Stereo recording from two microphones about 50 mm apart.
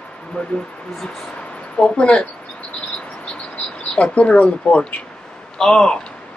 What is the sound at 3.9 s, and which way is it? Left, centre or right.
Speech, left.